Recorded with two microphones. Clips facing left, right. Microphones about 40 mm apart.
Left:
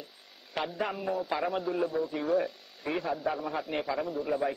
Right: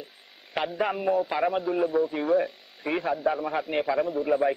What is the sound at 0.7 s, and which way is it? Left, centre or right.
Speech, right.